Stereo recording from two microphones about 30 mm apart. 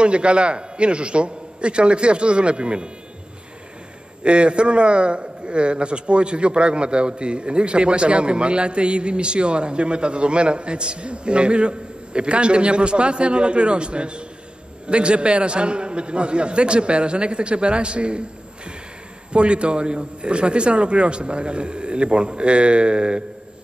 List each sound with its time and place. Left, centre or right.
0.0 s a man's voice: right
4.2 s a man's voice: right
19.3 s a man's voice: right